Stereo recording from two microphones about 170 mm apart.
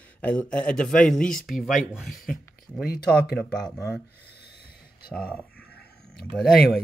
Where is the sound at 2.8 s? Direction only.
65° left (ahead or behind).